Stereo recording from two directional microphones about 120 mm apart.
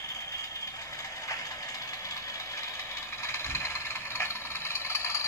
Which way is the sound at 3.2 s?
20° left (ahead or behind).